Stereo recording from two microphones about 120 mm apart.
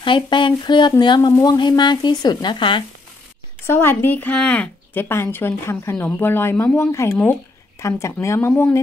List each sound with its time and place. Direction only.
0.0 s speech: 40° left (ahead or behind)
3.6 s speech: 20° left (ahead or behind)